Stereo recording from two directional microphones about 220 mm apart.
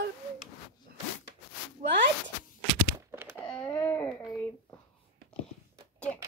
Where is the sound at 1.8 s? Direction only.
35° right (ahead or behind).